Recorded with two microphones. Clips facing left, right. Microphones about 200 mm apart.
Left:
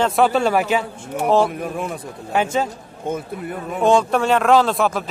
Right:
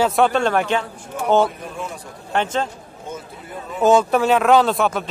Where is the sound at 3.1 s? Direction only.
60° left (ahead or behind).